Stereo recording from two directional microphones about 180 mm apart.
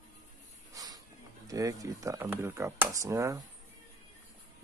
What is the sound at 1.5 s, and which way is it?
Speech, 20° right (ahead or behind).